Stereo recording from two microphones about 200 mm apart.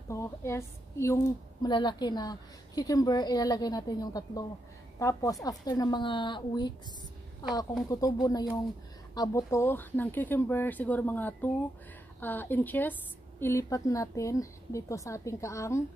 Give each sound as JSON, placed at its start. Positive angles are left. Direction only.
{"t": 0.1, "sound": "a woman's voice", "side_deg": 15}
{"t": 7.9, "sound": "speech", "side_deg": 20}